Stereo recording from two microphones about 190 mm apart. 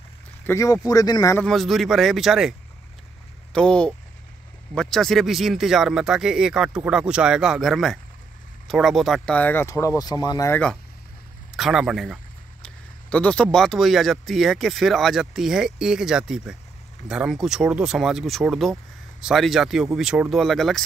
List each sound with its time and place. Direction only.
0.5 s speech: 15° left (ahead or behind)
1.4 s speech: centre (ahead or behind)
3.5 s speech: 5° left (ahead or behind)
11.5 s speech: centre (ahead or behind)